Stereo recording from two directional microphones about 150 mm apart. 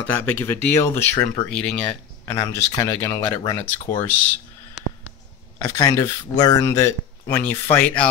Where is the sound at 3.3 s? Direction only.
30° left (ahead or behind).